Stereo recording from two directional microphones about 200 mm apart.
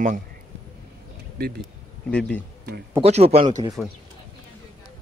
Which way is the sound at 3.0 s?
30° right (ahead or behind).